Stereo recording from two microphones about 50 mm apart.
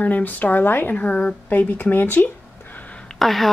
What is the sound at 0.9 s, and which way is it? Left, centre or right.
Speech, left.